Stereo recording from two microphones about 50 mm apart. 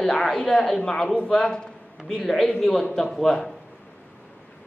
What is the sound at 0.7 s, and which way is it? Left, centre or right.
A man's voice, centre.